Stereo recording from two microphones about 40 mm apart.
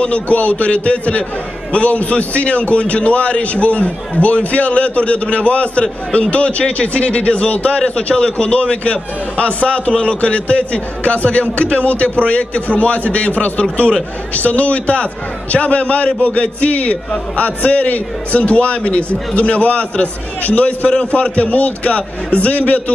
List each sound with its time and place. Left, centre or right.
0.0 s a man's voice: left